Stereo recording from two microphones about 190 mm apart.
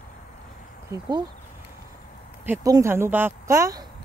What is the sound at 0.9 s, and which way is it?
Speech, 15° right (ahead or behind).